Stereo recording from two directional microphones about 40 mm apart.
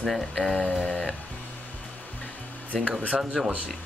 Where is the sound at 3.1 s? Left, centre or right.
Centre.